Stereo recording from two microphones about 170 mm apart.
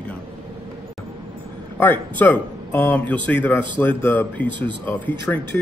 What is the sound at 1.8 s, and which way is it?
Speech, 10° left (ahead or behind).